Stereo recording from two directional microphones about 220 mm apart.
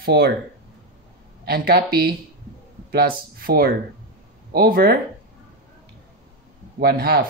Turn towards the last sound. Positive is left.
turn(degrees=-45)  # may be behind; listen again after turning